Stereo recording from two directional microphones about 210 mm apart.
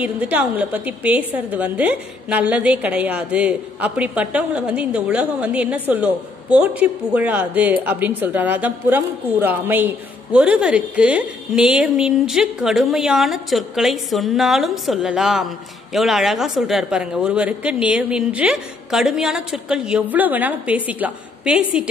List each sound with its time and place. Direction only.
0.0 s a woman's voice: 5° right (ahead or behind)